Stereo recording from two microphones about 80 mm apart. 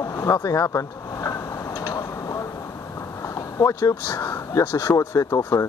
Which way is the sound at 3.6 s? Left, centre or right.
Left.